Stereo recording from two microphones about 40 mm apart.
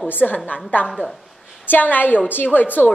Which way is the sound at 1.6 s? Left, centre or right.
Left.